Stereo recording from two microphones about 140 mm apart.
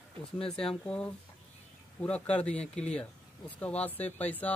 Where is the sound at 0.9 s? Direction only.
10° left (ahead or behind).